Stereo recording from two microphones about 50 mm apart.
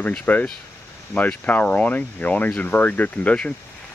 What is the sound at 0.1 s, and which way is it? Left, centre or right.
Speech, left.